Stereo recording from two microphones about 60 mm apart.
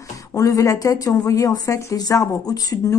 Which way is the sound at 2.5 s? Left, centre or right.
Left.